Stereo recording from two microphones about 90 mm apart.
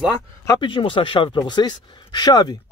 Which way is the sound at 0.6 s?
65° left (ahead or behind).